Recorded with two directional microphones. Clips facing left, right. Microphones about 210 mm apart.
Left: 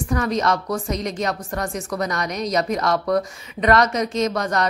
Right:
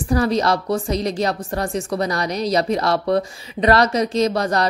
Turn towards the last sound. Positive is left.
turn(degrees=-35)  # may be behind; listen again after turning